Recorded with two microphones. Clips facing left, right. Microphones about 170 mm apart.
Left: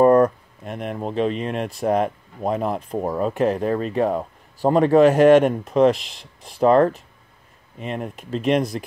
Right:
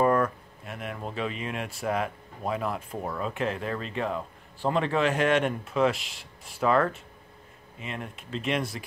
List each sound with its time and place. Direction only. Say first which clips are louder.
0.0 s speech: left 9 dB; 35° left (ahead or behind)